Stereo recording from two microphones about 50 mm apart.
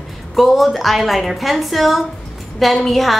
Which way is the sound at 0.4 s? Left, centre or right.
Centre.